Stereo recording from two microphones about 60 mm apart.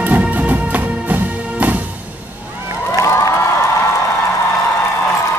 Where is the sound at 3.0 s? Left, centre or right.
Left.